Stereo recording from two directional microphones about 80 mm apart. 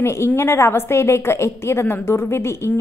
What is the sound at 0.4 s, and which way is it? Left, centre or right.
A woman's voice, left.